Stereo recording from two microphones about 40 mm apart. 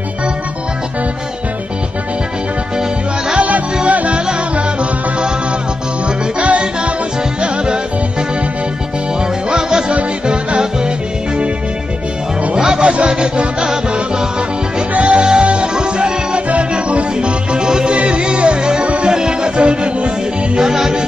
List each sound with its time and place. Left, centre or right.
3.3 s music: right
6.0 s music: right
7.4 s music: right
9.5 s music: centre
12.5 s music: centre
12.8 s music: right
15.0 s music: right
20.5 s music: centre